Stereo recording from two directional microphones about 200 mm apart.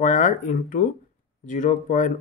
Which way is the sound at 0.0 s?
40° left (ahead or behind).